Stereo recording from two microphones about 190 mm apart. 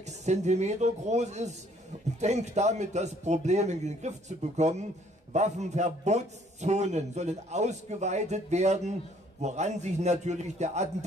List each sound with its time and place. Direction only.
0.0 s a man's voice: 35° right (ahead or behind)